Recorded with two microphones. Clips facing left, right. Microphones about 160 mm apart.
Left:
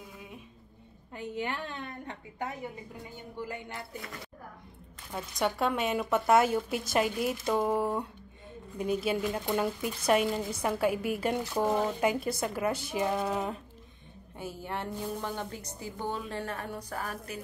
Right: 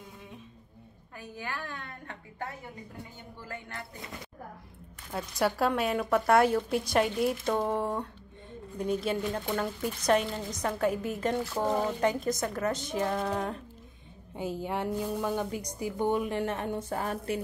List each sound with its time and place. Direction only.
1.1 s a woman's voice: 25° left (ahead or behind)
5.4 s a woman's voice: centre (ahead or behind)
14.3 s a woman's voice: 15° right (ahead or behind)